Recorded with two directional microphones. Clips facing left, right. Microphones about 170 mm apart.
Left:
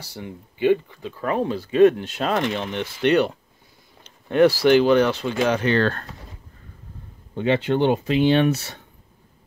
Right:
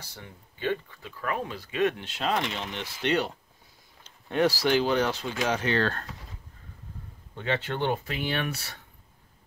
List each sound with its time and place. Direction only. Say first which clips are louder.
0.0 s speech: left 11 dB; 10° left (ahead or behind)
1.0 s speech: left 8 dB; 30° left (ahead or behind); by 5.9 s 65° left (ahead or behind)
7.3 s speech: left 10 dB; 15° left (ahead or behind)